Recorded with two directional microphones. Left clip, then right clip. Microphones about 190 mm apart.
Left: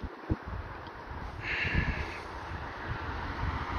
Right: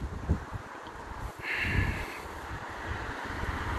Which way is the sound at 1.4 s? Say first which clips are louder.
Right 1 dB; 20° left (ahead or behind).